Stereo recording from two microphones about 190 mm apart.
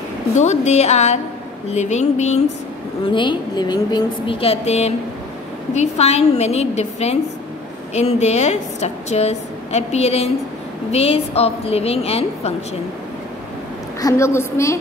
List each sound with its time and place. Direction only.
0.4 s a woman's voice: 35° left (ahead or behind)
3.1 s a woman's voice: 25° left (ahead or behind)
14.0 s a woman's voice: 15° left (ahead or behind)